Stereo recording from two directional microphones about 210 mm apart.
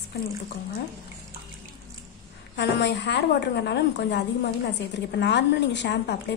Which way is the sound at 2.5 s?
55° left (ahead or behind).